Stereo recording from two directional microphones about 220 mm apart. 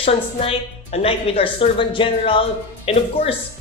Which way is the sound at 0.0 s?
25° left (ahead or behind).